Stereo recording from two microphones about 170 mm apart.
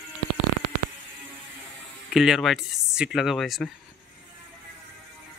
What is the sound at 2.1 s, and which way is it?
A man's voice, centre (ahead or behind).